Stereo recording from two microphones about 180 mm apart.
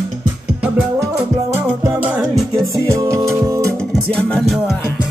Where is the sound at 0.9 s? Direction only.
15° right (ahead or behind).